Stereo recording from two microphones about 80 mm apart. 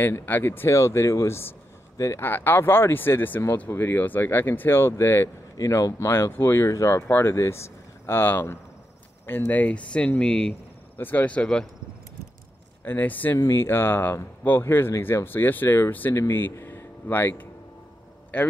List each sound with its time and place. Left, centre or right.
0.0 s speech: left
5.6 s speech: left; by 10.5 s centre
11.0 s speech: left
12.8 s speech: left